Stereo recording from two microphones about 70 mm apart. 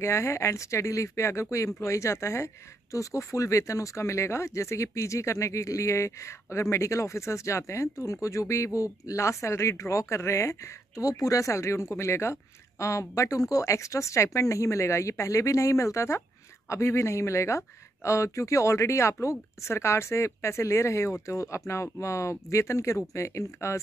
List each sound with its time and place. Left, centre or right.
0.0 s speech: left